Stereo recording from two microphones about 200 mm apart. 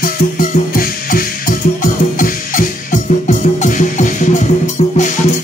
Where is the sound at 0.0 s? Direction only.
45° left (ahead or behind).